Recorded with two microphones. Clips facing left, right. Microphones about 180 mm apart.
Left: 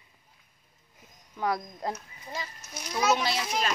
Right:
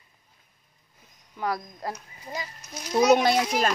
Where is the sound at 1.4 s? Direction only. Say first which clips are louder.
Even; centre (ahead or behind).